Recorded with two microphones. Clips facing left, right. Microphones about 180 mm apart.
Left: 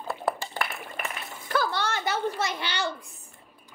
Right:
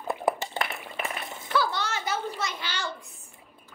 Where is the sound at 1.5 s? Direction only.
50° left (ahead or behind).